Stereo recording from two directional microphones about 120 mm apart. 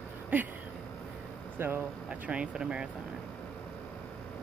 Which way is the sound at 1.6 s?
20° right (ahead or behind).